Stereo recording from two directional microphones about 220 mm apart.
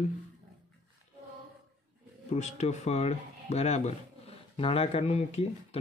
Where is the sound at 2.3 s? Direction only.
30° left (ahead or behind).